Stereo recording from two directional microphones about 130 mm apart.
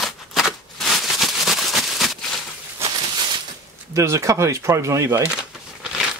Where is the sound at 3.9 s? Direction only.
20° right (ahead or behind).